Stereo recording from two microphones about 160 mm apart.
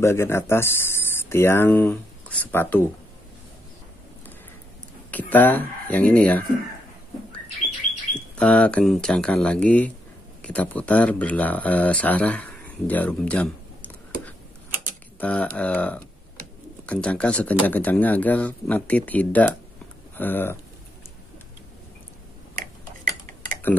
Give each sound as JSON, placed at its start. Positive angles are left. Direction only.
{"t": 0.0, "sound": "speech", "side_deg": 15}
{"t": 5.1, "sound": "speech", "side_deg": 10}
{"t": 8.1, "sound": "speech", "side_deg": 5}
{"t": 15.1, "sound": "speech", "side_deg": 5}
{"t": 22.6, "sound": "cutlery", "side_deg": -60}